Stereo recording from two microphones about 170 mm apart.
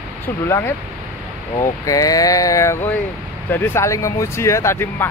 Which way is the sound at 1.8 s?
20° left (ahead or behind).